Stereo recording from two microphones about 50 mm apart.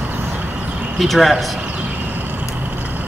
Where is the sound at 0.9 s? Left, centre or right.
Centre.